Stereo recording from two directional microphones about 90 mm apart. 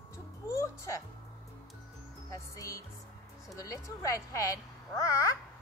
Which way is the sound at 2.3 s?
35° left (ahead or behind).